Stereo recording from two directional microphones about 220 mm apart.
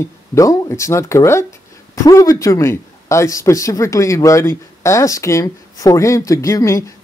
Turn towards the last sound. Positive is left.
turn(degrees=15)  # may be behind; listen again after turning